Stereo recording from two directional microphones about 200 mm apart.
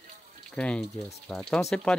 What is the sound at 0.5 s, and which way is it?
Speech, 5° left (ahead or behind).